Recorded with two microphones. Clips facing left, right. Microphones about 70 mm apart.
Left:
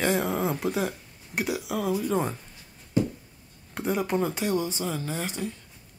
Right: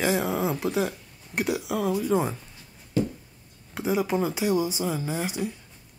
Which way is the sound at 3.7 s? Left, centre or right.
Centre.